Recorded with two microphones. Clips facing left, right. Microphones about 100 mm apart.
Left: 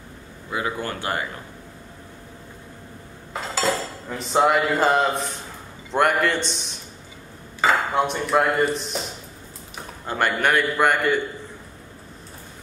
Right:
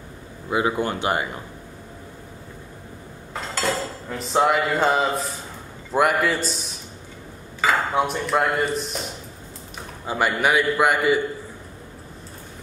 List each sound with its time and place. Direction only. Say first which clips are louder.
0.5 s speech: right 5 dB; 20° right (ahead or behind)
3.3 s a man's voice: left 1 dB; centre (ahead or behind)
7.6 s dishes: left 1 dB; centre (ahead or behind)
10.0 s a man's voice: right 1 dB; 5° right (ahead or behind)